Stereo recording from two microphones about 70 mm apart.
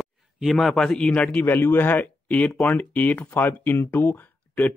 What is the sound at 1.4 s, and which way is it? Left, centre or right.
Speech, left.